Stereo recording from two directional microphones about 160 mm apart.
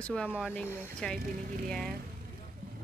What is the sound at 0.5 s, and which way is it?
Speech, 10° left (ahead or behind).